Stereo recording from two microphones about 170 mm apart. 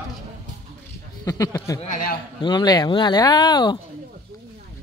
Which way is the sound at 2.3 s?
25° left (ahead or behind).